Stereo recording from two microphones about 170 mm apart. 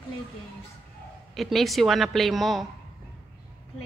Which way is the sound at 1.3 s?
Centre (ahead or behind).